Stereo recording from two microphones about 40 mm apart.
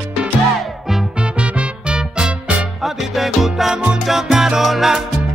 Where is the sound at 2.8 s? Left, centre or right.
Centre.